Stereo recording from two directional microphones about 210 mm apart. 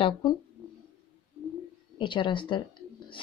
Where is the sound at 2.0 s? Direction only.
25° left (ahead or behind).